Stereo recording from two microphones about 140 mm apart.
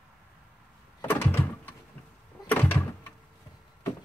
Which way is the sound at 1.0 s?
15° left (ahead or behind).